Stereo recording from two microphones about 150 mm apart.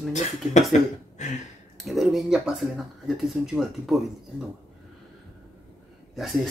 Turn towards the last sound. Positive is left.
turn(degrees=0)  # may be behind; listen again after turning